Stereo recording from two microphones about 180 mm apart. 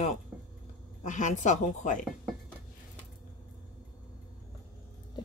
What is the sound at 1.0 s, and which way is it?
A woman's voice, 45° left (ahead or behind).